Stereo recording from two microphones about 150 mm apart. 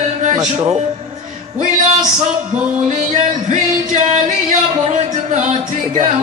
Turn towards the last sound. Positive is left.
turn(degrees=-55)  # may be behind; listen again after turning